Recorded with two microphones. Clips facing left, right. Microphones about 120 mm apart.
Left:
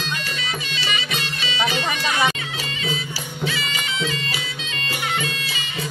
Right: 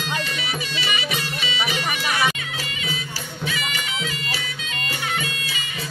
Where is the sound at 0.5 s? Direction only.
15° right (ahead or behind).